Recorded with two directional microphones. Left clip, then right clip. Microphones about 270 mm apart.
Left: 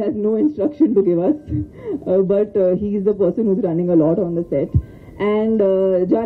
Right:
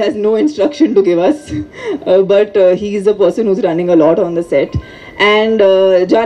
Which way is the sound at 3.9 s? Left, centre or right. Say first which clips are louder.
Right 7 dB; right.